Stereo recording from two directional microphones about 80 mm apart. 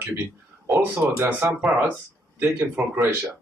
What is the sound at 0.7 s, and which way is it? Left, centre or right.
Speech, right.